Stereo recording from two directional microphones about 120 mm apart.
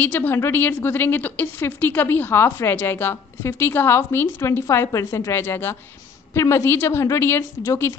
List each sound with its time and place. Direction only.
0.0 s a woman's voice: 15° left (ahead or behind)